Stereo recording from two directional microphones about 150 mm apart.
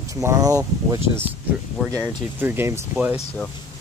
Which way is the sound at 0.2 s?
20° right (ahead or behind).